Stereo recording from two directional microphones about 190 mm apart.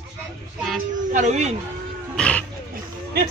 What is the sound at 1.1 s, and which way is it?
Speech, 40° right (ahead or behind).